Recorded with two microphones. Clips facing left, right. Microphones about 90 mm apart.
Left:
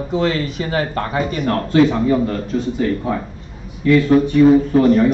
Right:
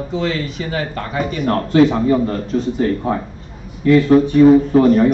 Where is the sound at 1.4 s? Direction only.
30° right (ahead or behind).